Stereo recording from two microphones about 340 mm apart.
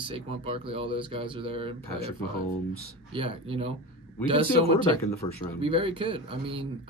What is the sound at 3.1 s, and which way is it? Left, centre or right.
Speech, centre.